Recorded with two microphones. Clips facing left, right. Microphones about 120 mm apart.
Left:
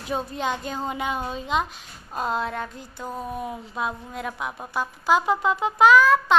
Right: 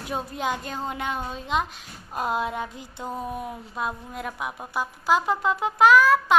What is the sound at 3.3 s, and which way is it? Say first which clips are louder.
A woman's voice: left 2 dB; centre (ahead or behind).